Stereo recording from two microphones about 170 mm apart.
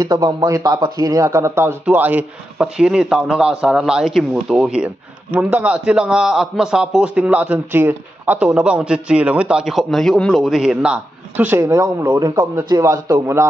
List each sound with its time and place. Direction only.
0.0 s speech: 20° right (ahead or behind)